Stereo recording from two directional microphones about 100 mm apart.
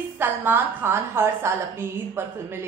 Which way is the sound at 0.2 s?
20° right (ahead or behind).